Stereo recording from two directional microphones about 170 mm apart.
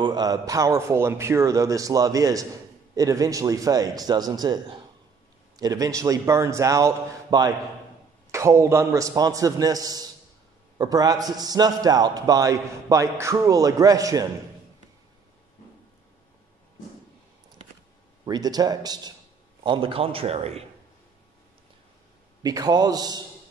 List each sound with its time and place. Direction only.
0.0 s a man's voice: 25° right (ahead or behind)
18.2 s a man's voice: 25° right (ahead or behind)
22.4 s a man's voice: 25° right (ahead or behind)